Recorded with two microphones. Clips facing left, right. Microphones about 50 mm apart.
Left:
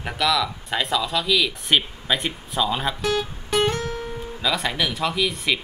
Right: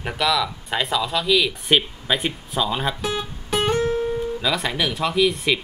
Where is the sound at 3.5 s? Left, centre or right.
Centre.